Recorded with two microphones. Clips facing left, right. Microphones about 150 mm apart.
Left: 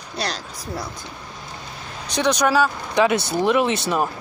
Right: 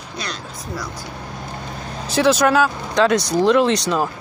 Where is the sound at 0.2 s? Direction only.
35° left (ahead or behind).